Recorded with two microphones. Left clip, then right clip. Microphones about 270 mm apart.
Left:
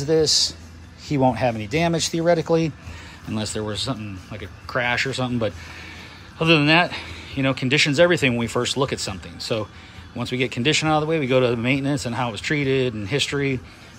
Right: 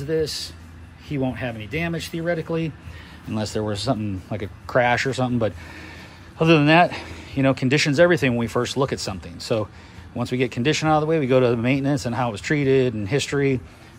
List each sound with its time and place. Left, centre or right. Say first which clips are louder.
0.0 s speech: left 6 dB; centre
3.3 s speech: right 2 dB; centre